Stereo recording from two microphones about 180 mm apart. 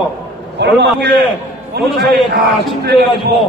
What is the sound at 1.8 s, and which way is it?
A man's voice, 60° right (ahead or behind).